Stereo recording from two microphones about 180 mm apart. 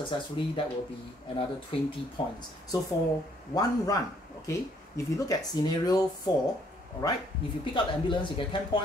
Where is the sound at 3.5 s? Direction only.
20° left (ahead or behind).